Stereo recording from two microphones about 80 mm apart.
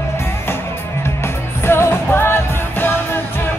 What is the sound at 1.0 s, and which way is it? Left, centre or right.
Music, left.